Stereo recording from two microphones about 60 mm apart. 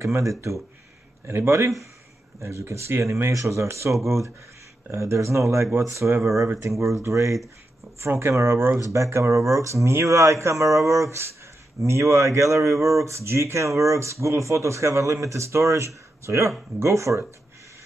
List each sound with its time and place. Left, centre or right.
0.0 s speech: right
1.2 s speech: right
8.1 s speech: right
8.7 s speech: right